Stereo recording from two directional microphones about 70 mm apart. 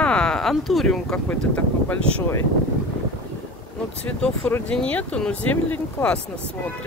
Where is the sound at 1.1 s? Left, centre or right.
Centre.